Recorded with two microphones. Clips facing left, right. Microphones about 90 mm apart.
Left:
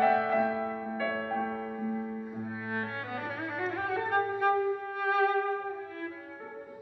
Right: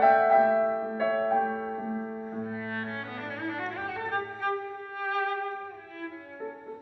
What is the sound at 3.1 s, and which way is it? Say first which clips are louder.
Violin: even; 15° left (ahead or behind).